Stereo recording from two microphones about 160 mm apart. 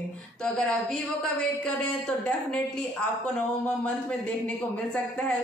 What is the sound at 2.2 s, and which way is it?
Speech, 5° left (ahead or behind).